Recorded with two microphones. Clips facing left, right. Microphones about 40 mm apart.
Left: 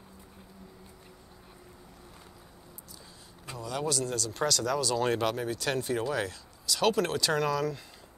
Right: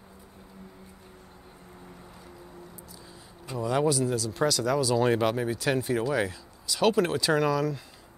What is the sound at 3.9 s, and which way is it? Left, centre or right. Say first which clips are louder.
Speech: right 5 dB; centre.